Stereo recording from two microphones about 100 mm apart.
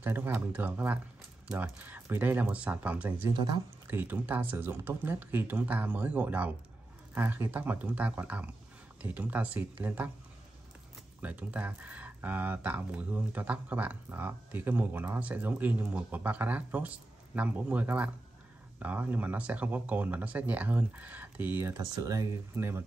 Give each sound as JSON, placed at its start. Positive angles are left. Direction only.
{"t": 0.0, "sound": "speech", "side_deg": -20}
{"t": 3.3, "sound": "speech", "side_deg": -45}
{"t": 3.9, "sound": "speech", "side_deg": -20}
{"t": 11.1, "sound": "speech", "side_deg": -15}
{"t": 21.7, "sound": "speech", "side_deg": -35}
{"t": 22.6, "sound": "speech", "side_deg": -25}